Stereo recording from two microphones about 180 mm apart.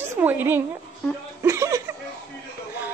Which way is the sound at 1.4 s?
15° right (ahead or behind).